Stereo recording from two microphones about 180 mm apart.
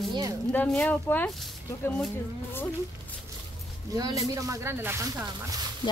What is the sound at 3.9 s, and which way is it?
Speech, 20° right (ahead or behind).